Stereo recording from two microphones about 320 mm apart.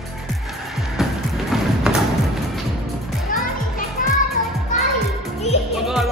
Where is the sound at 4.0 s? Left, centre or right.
Left.